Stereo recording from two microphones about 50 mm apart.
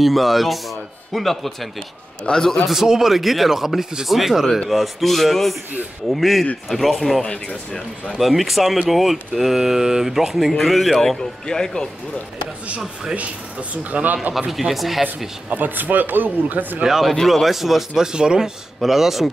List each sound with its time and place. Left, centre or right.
0.0 s speech: centre
2.2 s a man's voice: centre
2.6 s speech: centre
7.2 s a man's voice: centre
8.2 s a man's voice: centre
13.1 s speech: right
14.5 s speech: centre
15.5 s speech: right
16.8 s speech: centre
18.8 s speech: centre